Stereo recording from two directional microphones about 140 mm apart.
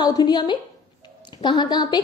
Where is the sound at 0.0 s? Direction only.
30° left (ahead or behind).